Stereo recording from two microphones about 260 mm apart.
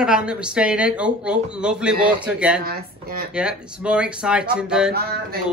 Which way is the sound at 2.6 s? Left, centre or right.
Right.